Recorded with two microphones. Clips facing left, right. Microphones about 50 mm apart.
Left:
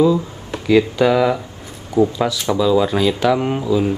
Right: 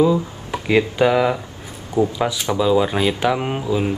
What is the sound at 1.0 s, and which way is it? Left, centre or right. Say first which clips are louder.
Speech: left 1 dB; centre.